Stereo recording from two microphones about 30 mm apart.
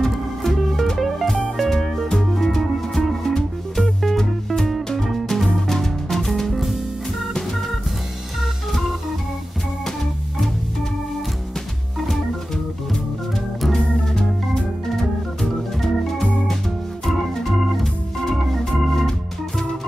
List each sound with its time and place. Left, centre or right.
0.0 s music: centre
5.3 s music: centre
13.7 s organ: left
15.0 s organ: centre